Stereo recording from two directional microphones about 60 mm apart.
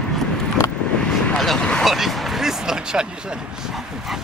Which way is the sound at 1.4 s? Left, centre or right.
Centre.